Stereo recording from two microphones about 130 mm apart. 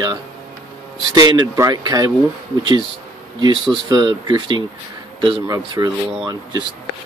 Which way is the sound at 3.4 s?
35° right (ahead or behind).